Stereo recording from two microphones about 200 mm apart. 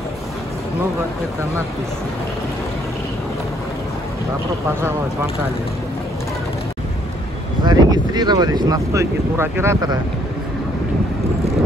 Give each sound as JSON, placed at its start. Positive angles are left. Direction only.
{"t": 7.6, "sound": "speech", "side_deg": -20}